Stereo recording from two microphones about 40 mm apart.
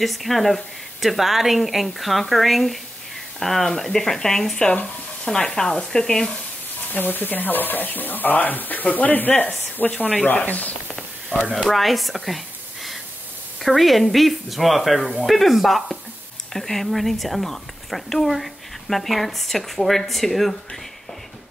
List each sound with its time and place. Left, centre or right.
0.0 s a woman's voice: centre
6.9 s speech: left
11.3 s speech: right
11.7 s a woman's voice: centre
13.6 s a woman's voice: centre